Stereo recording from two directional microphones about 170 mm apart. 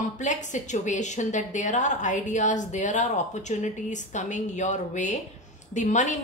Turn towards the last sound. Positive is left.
turn(degrees=45)  # may be behind; listen again after turning